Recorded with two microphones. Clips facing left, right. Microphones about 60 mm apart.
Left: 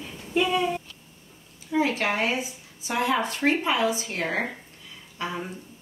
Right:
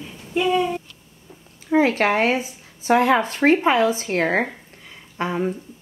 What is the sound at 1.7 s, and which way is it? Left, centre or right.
A woman's voice, right.